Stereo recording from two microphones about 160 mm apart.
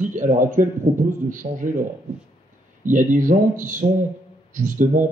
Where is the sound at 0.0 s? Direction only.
50° right (ahead or behind).